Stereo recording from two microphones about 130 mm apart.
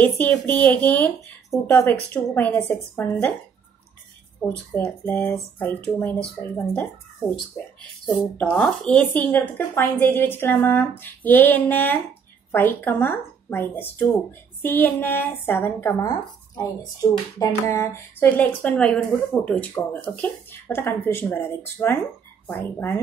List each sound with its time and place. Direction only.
0.0 s a woman's voice: 15° left (ahead or behind)
4.4 s a woman's voice: 15° left (ahead or behind)
18.4 s a woman's voice: 10° left (ahead or behind)